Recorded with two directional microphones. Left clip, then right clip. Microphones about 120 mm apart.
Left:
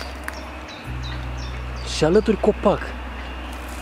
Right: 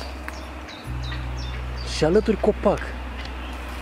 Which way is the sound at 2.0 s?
10° left (ahead or behind).